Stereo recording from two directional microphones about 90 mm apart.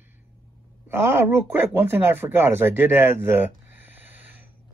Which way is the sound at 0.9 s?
25° right (ahead or behind).